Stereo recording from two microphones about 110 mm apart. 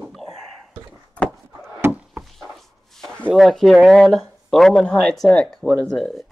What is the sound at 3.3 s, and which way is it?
Speech, centre (ahead or behind).